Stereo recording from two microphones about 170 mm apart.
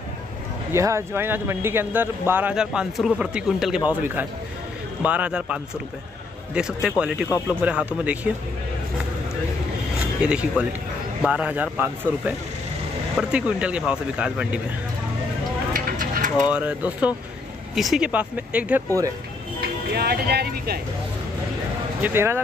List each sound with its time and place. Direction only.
0.7 s speech: 15° right (ahead or behind)
10.2 s speech: 5° right (ahead or behind)
15.7 s a sound: 55° right (ahead or behind)
16.5 s speech: 10° right (ahead or behind)
19.6 s speech: 70° right (ahead or behind)
22.0 s speech: 15° right (ahead or behind)